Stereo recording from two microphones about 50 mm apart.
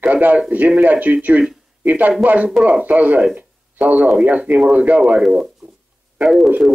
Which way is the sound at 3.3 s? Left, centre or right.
Right.